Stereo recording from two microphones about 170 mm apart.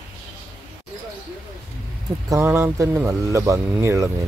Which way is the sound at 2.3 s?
15° right (ahead or behind).